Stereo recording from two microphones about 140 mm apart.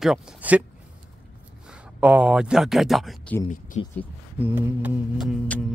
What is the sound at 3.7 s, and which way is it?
Speech, 50° left (ahead or behind).